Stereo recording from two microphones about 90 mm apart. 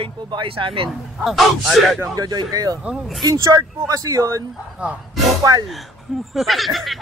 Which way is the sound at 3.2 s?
40° right (ahead or behind).